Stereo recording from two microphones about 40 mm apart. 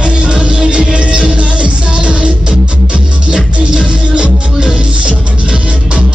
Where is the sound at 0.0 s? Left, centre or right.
Right.